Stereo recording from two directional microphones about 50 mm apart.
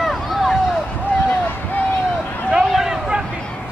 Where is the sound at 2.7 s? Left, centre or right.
Centre.